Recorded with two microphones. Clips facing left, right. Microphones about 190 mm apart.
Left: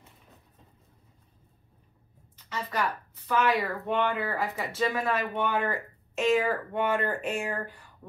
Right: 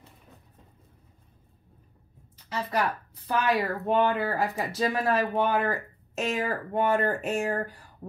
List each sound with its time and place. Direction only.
3.3 s speech: 35° right (ahead or behind)